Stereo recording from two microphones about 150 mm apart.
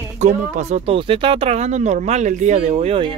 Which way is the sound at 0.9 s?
35° right (ahead or behind).